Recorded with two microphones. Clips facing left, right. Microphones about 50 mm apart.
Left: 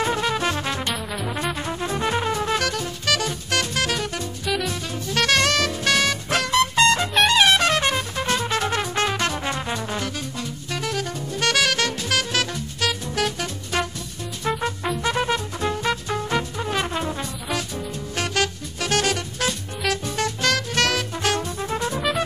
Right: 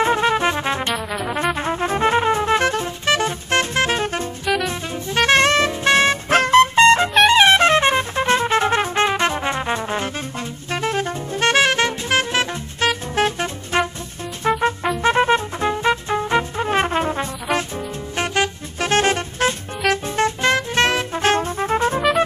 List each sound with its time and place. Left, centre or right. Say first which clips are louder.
0.0 s music: right 5 dB; right
7.2 s trumpet: right 5 dB; right
10.7 s music: right 6 dB; right